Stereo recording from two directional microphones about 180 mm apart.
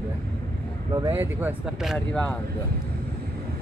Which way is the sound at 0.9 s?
15° right (ahead or behind).